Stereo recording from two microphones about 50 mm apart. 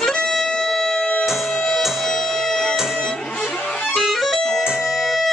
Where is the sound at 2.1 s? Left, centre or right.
Centre.